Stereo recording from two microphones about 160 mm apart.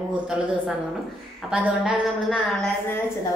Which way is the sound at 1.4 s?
5° right (ahead or behind).